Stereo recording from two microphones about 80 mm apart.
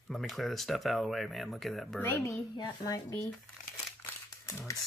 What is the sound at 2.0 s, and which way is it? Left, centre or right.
Speech, left.